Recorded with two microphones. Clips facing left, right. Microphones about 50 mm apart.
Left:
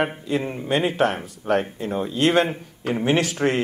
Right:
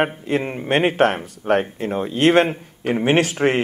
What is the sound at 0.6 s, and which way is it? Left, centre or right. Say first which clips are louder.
Speech: right 4 dB; right.